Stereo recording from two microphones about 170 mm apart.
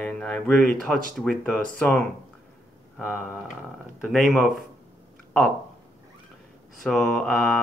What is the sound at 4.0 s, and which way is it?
Speech, centre (ahead or behind).